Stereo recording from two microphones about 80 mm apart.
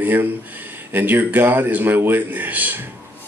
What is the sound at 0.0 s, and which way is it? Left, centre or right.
Speech, right.